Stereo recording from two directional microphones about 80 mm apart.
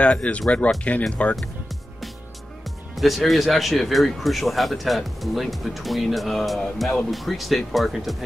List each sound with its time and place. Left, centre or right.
0.0 s speech: centre
3.0 s speech: centre